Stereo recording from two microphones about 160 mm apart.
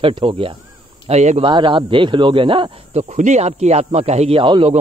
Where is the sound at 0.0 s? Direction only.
35° right (ahead or behind).